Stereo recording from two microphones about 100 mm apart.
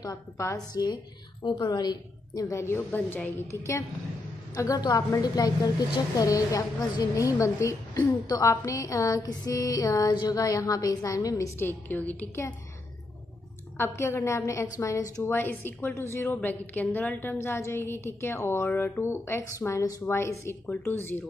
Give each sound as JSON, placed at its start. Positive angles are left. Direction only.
{"t": 0.0, "sound": "music", "side_deg": 35}
{"t": 1.7, "sound": "a woman's voice", "side_deg": 45}
{"t": 2.5, "sound": "a woman's voice", "side_deg": 25}
{"t": 4.6, "sound": "music", "side_deg": 35}
{"t": 13.7, "sound": "a woman's voice", "side_deg": 25}
{"t": 15.2, "sound": "a woman's voice", "side_deg": 20}